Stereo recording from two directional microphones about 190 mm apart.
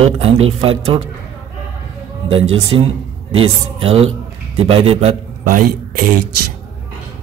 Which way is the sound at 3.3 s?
30° right (ahead or behind).